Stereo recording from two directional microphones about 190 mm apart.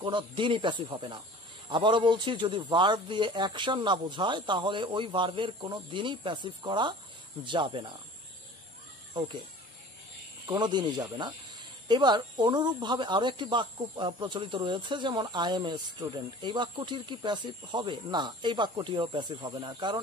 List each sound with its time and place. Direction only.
0.0 s speech: 25° right (ahead or behind)
10.4 s speech: 20° right (ahead or behind)